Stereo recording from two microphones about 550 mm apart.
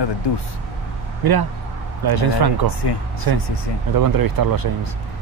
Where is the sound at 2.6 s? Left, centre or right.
Left.